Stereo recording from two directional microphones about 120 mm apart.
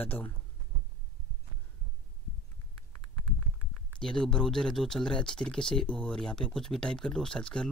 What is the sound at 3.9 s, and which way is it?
Speech, 5° left (ahead or behind).